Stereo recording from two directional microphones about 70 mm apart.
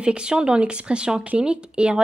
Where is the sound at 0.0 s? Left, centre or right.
Centre.